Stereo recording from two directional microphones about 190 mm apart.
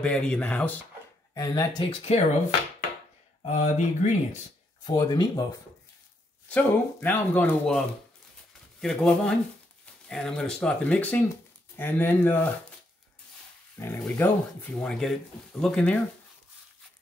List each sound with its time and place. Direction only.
0.0 s speech: 5° left (ahead or behind)
1.3 s speech: 20° left (ahead or behind)
3.4 s speech: 40° left (ahead or behind)
4.8 s speech: 20° left (ahead or behind)
6.5 s speech: 10° left (ahead or behind)
8.8 s speech: 5° left (ahead or behind)
13.7 s speech: 10° left (ahead or behind)